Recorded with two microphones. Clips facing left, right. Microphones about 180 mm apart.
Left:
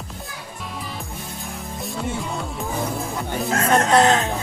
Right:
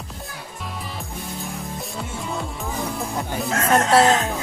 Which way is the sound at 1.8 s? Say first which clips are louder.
Left 4 dB; centre (ahead or behind).